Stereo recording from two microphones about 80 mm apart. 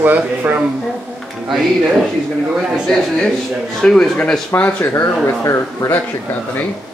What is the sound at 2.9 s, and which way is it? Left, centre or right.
Speech, centre.